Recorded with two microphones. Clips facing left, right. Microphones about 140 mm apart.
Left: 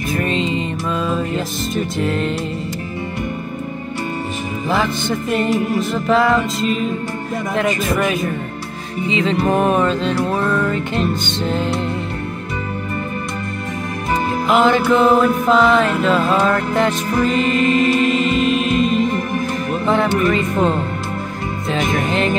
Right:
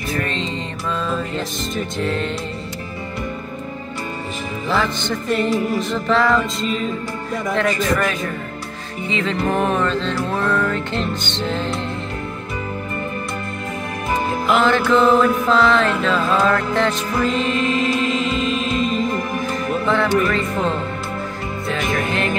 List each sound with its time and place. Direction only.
0.1 s music: 10° left (ahead or behind)
4.6 s music: 10° left (ahead or behind)
14.5 s music: 15° left (ahead or behind)